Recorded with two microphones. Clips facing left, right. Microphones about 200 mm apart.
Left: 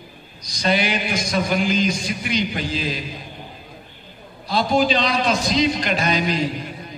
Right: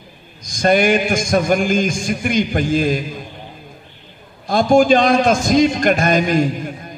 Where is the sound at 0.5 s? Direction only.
50° right (ahead or behind).